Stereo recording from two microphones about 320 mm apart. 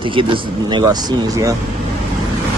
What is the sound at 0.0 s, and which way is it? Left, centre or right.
Speech, centre.